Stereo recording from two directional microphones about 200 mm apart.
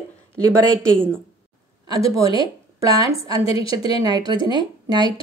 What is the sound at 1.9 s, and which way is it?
Speech, 15° right (ahead or behind).